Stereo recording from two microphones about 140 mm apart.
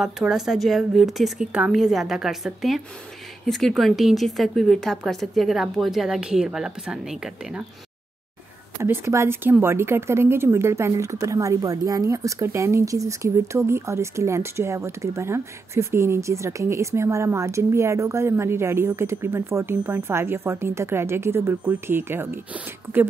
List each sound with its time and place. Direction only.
0.0 s a woman's voice: 5° right (ahead or behind)
8.8 s speech: 15° right (ahead or behind)